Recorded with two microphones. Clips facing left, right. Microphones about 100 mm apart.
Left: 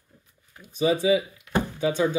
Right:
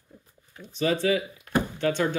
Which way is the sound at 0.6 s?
10° left (ahead or behind).